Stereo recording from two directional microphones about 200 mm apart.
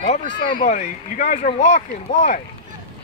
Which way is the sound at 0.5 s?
40° left (ahead or behind).